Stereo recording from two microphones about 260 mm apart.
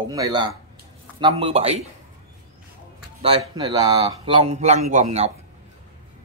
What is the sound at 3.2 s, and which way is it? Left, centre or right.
Speech, centre.